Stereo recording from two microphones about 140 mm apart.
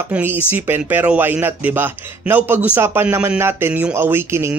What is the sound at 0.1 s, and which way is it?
Speech, 15° right (ahead or behind).